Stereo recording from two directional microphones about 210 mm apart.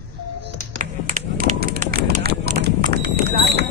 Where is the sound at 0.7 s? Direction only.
40° right (ahead or behind).